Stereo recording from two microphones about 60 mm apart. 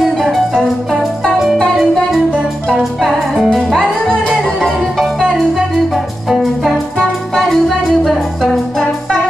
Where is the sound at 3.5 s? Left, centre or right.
Centre.